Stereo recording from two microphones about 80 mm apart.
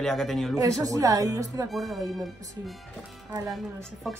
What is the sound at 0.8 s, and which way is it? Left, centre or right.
Speech, right.